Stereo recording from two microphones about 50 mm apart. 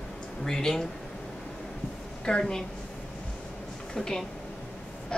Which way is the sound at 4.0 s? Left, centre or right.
Centre.